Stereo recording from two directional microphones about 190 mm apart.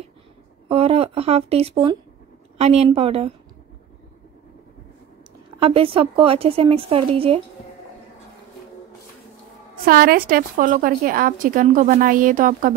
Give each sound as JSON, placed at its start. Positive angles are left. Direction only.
{"t": 0.7, "sound": "speech", "side_deg": -30}
{"t": 5.6, "sound": "a woman's voice", "side_deg": -30}
{"t": 9.8, "sound": "a woman's voice", "side_deg": -50}